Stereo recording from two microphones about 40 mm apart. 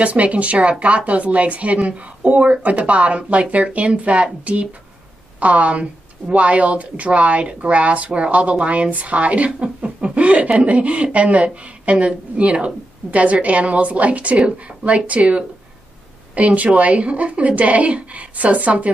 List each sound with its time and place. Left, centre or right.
0.0 s a woman's voice: right
9.8 s chuckle: right
10.6 s a woman's voice: right